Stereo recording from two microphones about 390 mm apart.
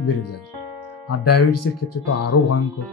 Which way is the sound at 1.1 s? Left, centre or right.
Left.